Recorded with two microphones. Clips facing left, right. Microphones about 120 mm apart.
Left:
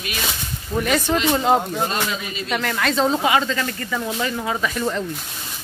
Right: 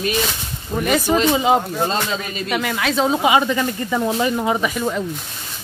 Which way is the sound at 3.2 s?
15° right (ahead or behind).